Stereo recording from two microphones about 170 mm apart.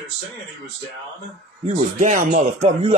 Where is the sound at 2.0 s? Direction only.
45° right (ahead or behind).